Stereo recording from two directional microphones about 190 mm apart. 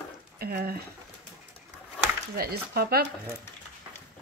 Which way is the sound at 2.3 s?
55° right (ahead or behind).